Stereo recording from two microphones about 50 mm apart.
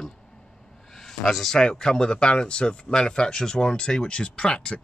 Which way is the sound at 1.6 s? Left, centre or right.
Centre.